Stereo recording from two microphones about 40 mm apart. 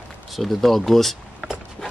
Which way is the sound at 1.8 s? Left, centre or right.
Centre.